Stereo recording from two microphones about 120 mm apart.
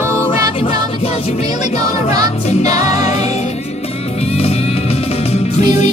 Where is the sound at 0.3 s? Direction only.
45° left (ahead or behind).